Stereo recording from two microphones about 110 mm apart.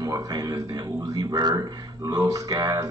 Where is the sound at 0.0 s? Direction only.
35° right (ahead or behind).